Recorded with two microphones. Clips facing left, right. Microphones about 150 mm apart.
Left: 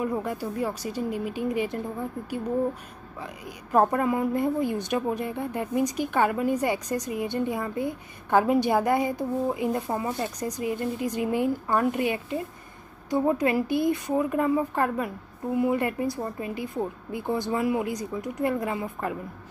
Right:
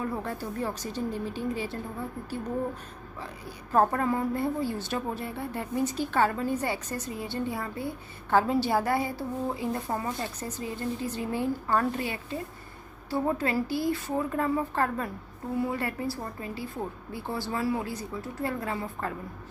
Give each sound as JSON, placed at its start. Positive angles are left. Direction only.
{"t": 0.0, "sound": "a woman's voice", "side_deg": 15}
{"t": 3.2, "sound": "a woman's voice", "side_deg": 15}